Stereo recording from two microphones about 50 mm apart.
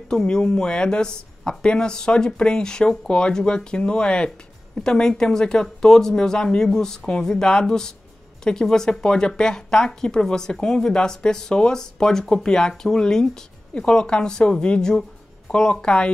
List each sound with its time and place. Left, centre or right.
0.1 s speech: centre